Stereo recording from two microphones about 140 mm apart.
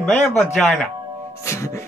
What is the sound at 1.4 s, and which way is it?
Music, 20° left (ahead or behind).